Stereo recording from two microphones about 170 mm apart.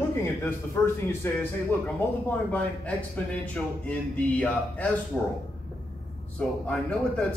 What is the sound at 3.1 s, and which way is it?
A man's voice, 10° left (ahead or behind).